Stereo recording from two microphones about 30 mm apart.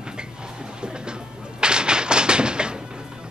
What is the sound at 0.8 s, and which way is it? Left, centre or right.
Music, right.